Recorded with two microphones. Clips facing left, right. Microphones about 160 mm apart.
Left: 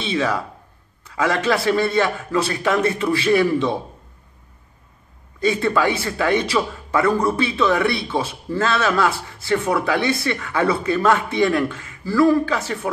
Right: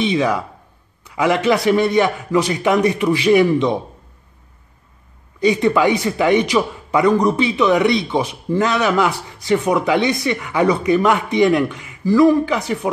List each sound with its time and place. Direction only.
0.0 s a man's voice: 15° right (ahead or behind)
5.4 s a man's voice: 15° right (ahead or behind)